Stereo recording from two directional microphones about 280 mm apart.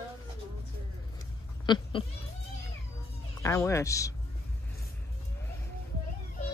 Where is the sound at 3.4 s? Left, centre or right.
Centre.